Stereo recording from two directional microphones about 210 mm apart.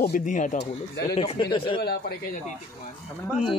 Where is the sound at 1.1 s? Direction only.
25° left (ahead or behind).